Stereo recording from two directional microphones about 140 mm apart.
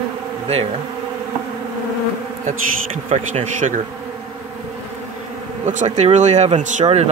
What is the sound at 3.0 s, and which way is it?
Speech, 50° right (ahead or behind).